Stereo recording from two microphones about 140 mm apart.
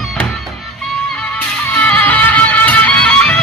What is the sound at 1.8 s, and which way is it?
Music, 10° left (ahead or behind).